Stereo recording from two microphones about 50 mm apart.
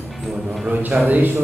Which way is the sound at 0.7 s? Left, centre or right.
Right.